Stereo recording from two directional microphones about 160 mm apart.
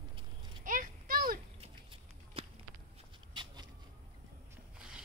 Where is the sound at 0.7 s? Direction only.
60° right (ahead or behind).